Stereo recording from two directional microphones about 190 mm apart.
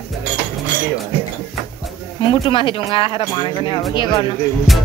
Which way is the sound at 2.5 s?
25° left (ahead or behind).